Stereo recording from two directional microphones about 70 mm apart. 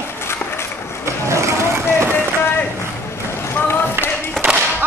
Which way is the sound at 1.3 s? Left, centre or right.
Right.